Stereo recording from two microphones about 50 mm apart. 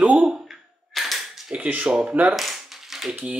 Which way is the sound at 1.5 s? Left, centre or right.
Right.